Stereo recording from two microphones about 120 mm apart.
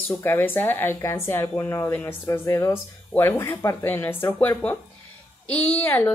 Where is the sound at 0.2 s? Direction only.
20° left (ahead or behind).